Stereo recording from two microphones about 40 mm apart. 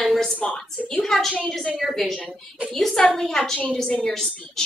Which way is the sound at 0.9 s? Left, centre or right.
Centre.